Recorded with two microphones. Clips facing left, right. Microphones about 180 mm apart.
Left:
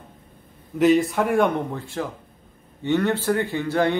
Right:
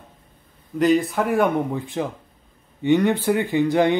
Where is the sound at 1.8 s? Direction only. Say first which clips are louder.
Right 3 dB; 20° right (ahead or behind).